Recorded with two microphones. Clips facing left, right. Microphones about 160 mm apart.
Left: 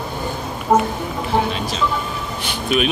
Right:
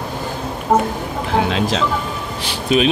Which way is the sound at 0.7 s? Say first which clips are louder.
Even; 10° right (ahead or behind).